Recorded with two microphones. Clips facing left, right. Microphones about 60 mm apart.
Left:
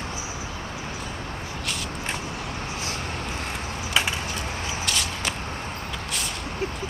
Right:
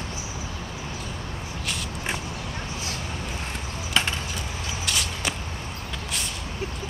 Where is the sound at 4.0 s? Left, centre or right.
Centre.